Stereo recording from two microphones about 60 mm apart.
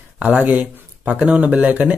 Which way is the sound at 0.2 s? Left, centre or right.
Right.